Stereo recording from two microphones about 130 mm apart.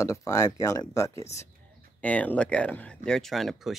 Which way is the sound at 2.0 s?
10° left (ahead or behind).